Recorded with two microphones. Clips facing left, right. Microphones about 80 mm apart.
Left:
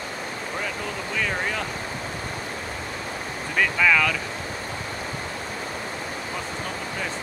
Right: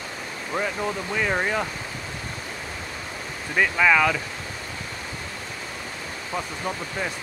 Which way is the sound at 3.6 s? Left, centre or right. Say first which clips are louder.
Right 2 dB; centre.